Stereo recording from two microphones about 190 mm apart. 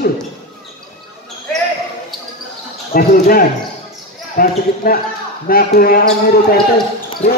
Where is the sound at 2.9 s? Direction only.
50° left (ahead or behind).